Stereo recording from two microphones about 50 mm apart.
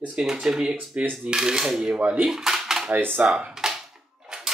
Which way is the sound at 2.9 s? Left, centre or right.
Right.